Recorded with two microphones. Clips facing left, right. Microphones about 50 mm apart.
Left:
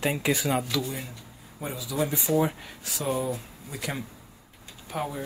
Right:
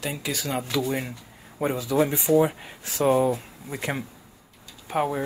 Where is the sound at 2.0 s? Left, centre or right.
Right.